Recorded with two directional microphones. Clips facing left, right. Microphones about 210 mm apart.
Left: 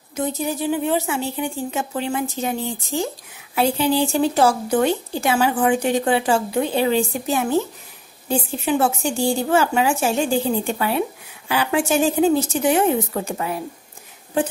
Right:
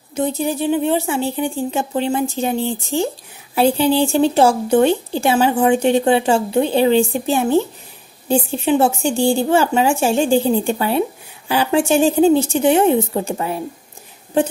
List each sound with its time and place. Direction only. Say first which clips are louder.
0.1 s speech: right 4 dB; 30° right (ahead or behind)